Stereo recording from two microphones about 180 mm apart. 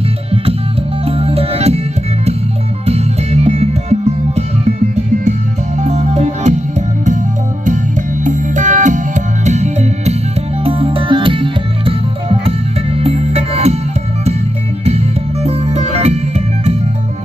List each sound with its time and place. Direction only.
1.0 s music: 35° right (ahead or behind)
2.9 s music: 35° right (ahead or behind)
15.4 s music: 35° right (ahead or behind)